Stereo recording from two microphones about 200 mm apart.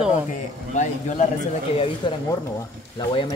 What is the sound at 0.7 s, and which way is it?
Speech, 40° left (ahead or behind).